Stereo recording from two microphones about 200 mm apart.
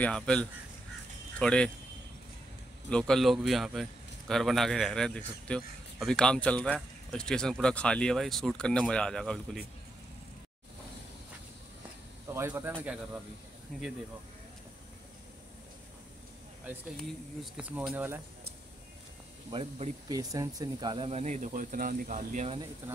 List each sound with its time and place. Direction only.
0.0 s a man's voice: 5° left (ahead or behind)
2.9 s a man's voice: 5° left (ahead or behind)
12.3 s a man's voice: 15° right (ahead or behind)
17.6 s speech: 5° right (ahead or behind)
19.5 s speech: 25° right (ahead or behind)